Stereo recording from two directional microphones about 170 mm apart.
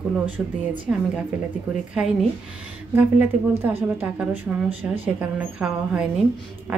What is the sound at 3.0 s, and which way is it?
A woman's voice, 15° right (ahead or behind).